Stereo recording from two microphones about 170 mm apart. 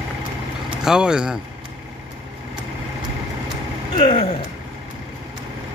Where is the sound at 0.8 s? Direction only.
5° right (ahead or behind).